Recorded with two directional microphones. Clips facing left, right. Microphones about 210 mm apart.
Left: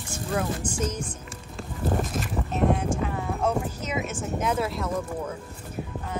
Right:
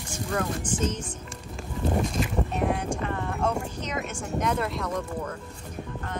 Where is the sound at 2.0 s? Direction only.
Centre (ahead or behind).